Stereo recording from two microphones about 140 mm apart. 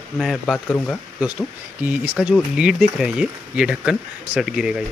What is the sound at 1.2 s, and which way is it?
Speech, 10° right (ahead or behind).